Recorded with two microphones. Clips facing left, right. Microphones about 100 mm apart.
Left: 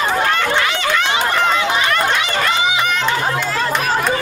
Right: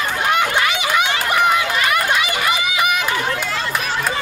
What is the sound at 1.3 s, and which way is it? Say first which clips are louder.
Run: right 2 dB; 10° right (ahead or behind).